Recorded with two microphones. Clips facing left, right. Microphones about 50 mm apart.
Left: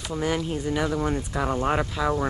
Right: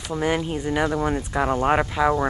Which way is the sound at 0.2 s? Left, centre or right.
Right.